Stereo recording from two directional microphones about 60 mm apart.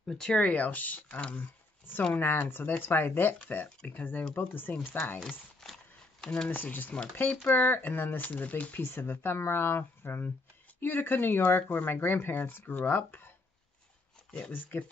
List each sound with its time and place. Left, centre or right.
0.1 s speech: centre
0.4 s speech: left
1.4 s a sound: left
2.1 s speech: left
5.6 s horse: centre
6.2 s speech: centre
6.5 s speech: left
8.8 s speech: left
14.5 s speech: left